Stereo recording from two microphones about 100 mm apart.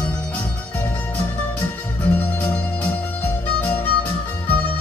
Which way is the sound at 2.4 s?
15° left (ahead or behind).